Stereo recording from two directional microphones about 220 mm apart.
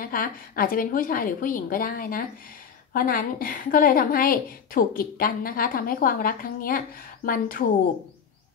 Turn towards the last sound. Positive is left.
turn(degrees=40)  # may be behind; listen again after turning